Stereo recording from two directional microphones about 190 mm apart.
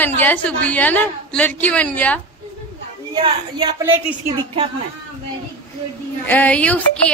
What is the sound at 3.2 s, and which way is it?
Speech, 25° right (ahead or behind).